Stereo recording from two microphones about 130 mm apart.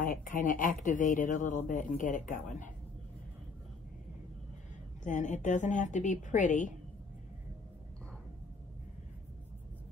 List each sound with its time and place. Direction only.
0.0 s speech: 90° left
5.0 s a woman's voice: 65° left (ahead or behind)